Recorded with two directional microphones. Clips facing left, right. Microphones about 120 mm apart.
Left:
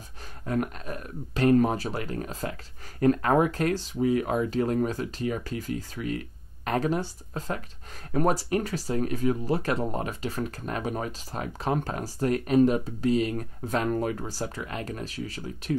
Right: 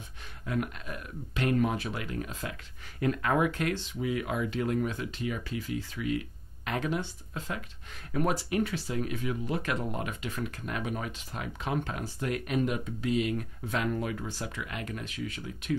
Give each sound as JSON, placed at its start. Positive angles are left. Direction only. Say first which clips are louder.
{"t": 0.5, "sound": "speech", "louder": "left 4 dB", "side_deg": 40}